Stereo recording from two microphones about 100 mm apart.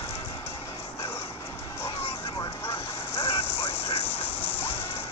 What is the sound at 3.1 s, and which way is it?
Vehicle, 80° left.